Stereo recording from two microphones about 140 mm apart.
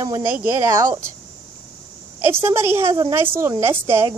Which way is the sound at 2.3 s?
15° right (ahead or behind).